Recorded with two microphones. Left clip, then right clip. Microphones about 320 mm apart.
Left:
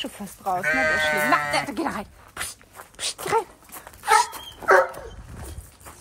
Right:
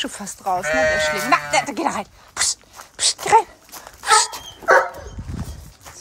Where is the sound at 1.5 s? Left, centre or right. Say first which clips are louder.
Right 5 dB; centre.